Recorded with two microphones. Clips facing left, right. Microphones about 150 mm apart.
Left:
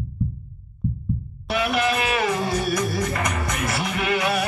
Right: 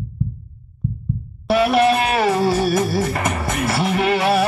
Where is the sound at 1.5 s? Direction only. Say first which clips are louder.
Right 8 dB; 30° right (ahead or behind).